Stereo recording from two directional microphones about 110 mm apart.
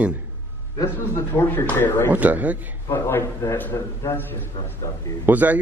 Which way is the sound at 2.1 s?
15° right (ahead or behind).